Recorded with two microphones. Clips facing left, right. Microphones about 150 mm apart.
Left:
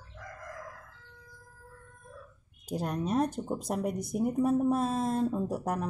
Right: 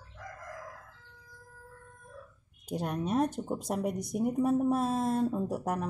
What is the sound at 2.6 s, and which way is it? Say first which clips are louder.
Speech: left 1 dB; centre (ahead or behind).